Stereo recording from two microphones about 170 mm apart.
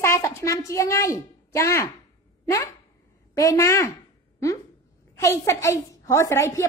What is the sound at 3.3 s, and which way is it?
Speech, 20° left (ahead or behind).